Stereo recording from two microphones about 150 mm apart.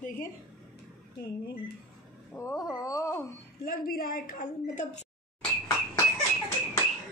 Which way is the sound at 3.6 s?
70° left (ahead or behind).